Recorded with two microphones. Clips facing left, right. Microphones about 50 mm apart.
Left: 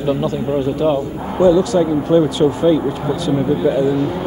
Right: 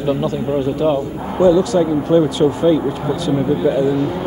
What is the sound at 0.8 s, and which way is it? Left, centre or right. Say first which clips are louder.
Speech: even; centre.